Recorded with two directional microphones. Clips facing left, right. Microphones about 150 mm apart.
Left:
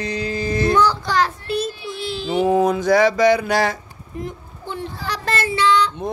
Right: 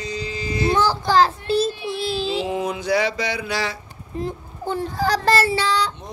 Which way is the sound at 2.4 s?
45° left (ahead or behind).